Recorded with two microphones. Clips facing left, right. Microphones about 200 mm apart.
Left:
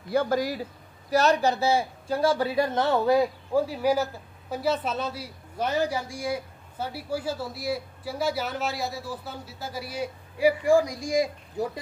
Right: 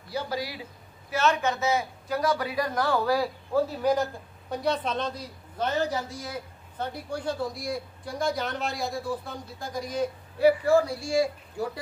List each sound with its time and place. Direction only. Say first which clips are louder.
0.1 s a man's voice: left 7 dB; 50° left (ahead or behind); by 11.8 s 20° left (ahead or behind)